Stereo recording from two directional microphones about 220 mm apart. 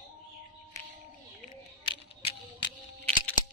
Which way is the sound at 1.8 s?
25° left (ahead or behind).